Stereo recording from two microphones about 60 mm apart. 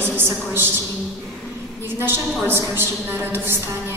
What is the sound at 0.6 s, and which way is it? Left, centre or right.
A woman's voice, right.